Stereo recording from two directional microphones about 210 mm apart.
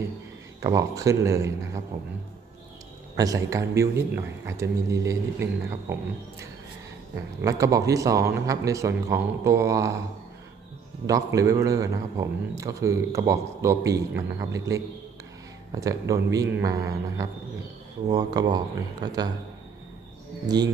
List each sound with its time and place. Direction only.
0.6 s speech: 15° right (ahead or behind)
3.2 s speech: 15° right (ahead or behind)
7.4 s speech: 15° right (ahead or behind)
11.1 s speech: 15° right (ahead or behind)
20.4 s speech: 20° right (ahead or behind)